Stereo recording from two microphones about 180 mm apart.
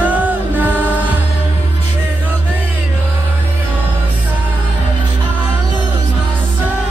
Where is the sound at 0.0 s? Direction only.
10° right (ahead or behind).